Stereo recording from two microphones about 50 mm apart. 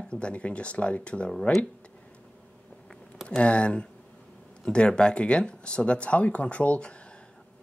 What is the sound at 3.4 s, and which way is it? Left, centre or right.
Speech, left.